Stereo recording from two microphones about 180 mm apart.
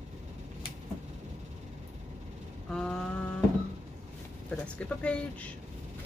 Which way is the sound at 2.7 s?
5° left (ahead or behind).